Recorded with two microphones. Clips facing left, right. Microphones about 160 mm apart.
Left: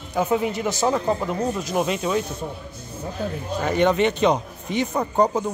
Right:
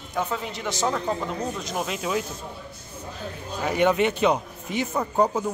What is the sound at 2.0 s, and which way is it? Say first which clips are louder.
Speech: left 4 dB; 5° right (ahead or behind).